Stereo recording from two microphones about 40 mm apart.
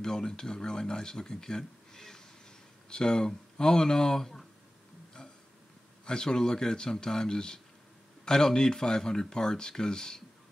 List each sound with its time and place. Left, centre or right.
0.0 s speech: centre
6.0 s speech: centre